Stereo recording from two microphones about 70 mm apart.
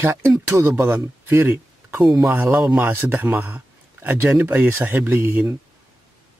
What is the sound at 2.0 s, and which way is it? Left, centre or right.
Speech, centre.